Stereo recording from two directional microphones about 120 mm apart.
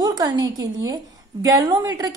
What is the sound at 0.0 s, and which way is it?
A woman's voice, 35° right (ahead or behind).